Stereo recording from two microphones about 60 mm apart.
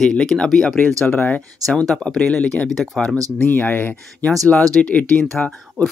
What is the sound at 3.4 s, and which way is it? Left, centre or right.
Speech, left.